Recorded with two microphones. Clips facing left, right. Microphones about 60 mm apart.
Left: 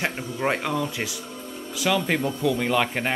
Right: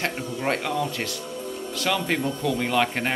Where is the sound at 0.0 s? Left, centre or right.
Centre.